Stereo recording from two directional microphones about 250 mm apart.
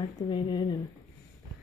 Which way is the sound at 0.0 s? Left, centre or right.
Centre.